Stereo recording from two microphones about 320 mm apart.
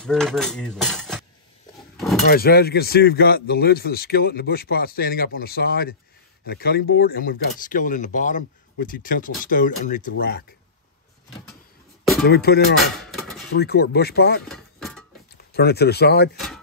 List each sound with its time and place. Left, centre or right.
0.0 s speech: centre
2.0 s a sound: centre
2.2 s speech: left
12.3 s speech: left
12.9 s cutlery: centre
13.6 s speech: left
14.5 s a sound: centre
15.5 s speech: left